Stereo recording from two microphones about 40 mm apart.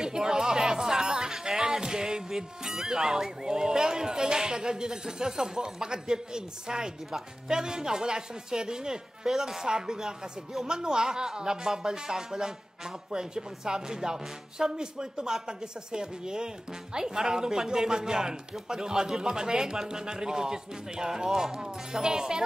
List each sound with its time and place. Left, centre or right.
0.0 s speech: centre